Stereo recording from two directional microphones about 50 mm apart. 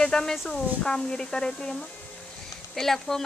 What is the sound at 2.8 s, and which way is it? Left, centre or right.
Speech, centre.